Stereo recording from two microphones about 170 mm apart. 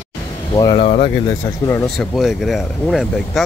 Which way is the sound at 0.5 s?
20° left (ahead or behind).